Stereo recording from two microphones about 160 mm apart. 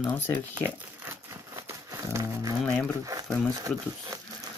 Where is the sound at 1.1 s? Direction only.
15° right (ahead or behind).